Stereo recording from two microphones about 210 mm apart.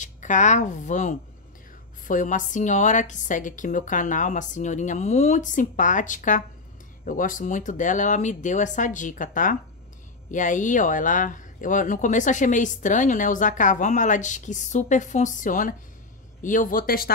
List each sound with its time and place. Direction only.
0.0 s speech: 35° left (ahead or behind)